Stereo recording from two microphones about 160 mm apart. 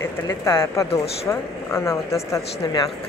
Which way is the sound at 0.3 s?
20° left (ahead or behind).